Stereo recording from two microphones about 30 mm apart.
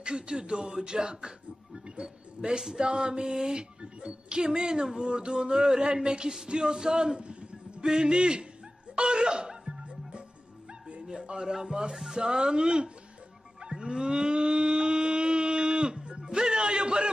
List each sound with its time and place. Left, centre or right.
0.0 s speech: right
3.8 s a man's voice: right
8.9 s music: right
11.0 s a sound: right
11.5 s music: centre
12.2 s speech: right
13.6 s moo: right